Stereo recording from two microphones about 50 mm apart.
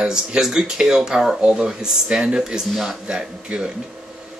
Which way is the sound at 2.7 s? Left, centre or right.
Centre.